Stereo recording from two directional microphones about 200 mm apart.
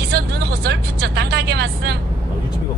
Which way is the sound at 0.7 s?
55° right (ahead or behind).